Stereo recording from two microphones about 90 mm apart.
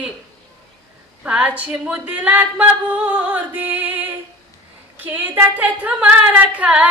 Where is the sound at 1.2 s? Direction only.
15° right (ahead or behind).